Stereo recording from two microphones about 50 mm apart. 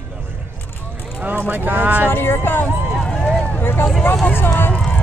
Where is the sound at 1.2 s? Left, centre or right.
Right.